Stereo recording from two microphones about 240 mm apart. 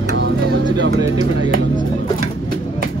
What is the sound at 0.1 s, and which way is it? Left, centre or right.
Music, right.